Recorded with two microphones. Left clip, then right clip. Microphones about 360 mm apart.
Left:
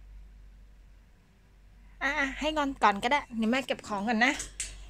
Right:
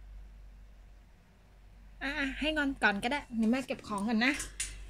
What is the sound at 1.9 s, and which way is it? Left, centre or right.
A woman's voice, centre.